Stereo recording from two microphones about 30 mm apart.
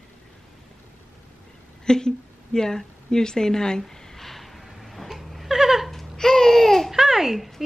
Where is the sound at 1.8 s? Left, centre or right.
Left.